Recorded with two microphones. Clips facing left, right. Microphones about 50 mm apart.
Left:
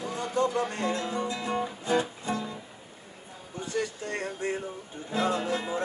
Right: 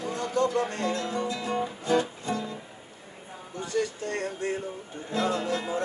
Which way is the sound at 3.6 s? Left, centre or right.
Centre.